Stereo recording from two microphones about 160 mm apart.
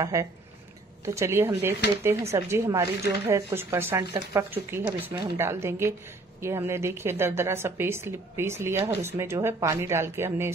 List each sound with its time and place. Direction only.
0.0 s a woman's voice: 20° right (ahead or behind)